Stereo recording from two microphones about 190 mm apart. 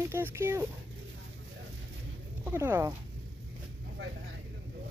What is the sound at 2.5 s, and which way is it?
Speech, 15° right (ahead or behind).